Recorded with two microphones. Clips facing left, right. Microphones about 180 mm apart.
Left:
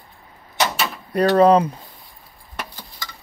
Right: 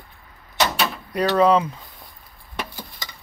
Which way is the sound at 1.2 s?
40° left (ahead or behind).